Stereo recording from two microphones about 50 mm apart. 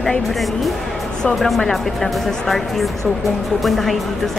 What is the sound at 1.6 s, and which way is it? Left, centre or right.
Speech, centre.